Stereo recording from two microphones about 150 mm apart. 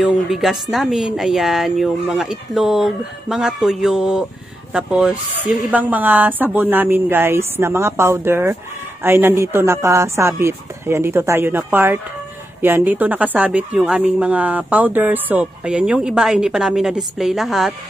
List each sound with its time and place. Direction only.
0.0 s speech: 5° right (ahead or behind)